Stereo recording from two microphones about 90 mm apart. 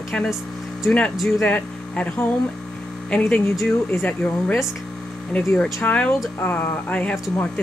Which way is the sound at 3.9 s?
20° left (ahead or behind).